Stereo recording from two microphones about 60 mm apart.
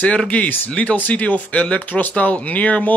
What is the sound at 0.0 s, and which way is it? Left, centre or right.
Speech, left.